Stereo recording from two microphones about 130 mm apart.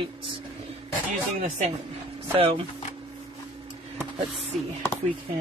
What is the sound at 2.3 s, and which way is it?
Speech, 50° right (ahead or behind).